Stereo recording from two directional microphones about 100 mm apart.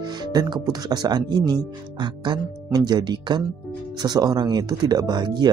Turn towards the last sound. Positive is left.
turn(degrees=-45)  # may be behind; listen again after turning